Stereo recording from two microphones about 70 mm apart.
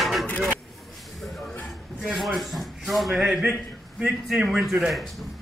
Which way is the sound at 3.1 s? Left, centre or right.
Centre.